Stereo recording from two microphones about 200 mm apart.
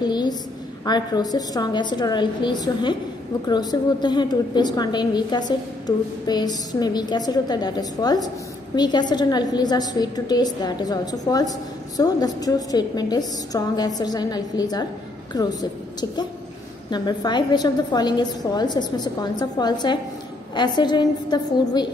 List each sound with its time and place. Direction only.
0.0 s a sound: 20° left (ahead or behind)
0.8 s a woman's voice: 20° left (ahead or behind)
16.9 s a woman's voice: 20° left (ahead or behind)